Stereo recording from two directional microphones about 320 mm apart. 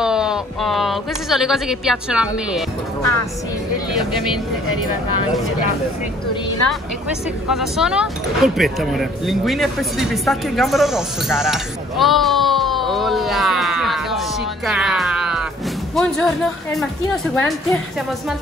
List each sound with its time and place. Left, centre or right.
0.0 s speech: centre
7.4 s a woman's voice: centre